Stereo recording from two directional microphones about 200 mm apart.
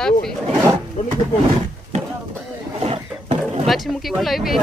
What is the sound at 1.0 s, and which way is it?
Speech, 30° left (ahead or behind).